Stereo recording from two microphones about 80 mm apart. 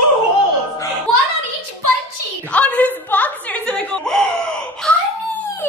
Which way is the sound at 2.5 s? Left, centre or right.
Centre.